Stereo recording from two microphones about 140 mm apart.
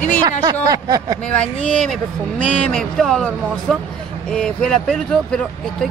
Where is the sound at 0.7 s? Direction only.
30° right (ahead or behind).